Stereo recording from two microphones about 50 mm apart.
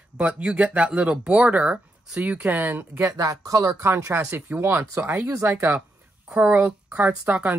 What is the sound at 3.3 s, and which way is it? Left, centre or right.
Speech, right.